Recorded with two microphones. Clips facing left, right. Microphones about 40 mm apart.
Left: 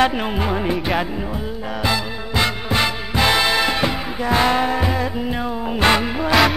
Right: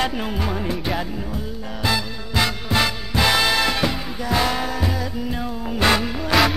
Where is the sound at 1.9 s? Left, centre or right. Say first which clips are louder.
Even; left.